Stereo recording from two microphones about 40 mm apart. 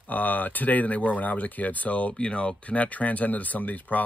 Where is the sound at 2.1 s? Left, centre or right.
Left.